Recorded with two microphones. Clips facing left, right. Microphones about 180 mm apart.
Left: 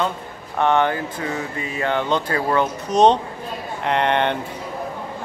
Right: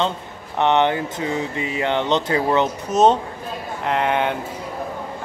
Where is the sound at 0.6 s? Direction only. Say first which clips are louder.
Right 1 dB; 20° right (ahead or behind).